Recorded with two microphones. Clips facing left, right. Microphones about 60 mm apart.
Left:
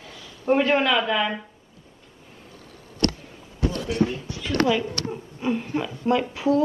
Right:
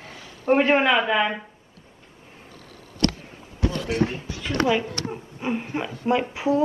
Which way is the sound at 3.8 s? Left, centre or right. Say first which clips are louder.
Left 1 dB; right.